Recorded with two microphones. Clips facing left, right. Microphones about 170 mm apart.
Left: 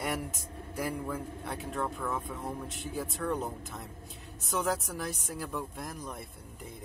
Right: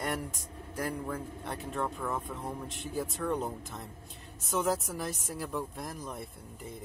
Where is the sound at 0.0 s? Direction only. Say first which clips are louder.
Even; 5° left (ahead or behind).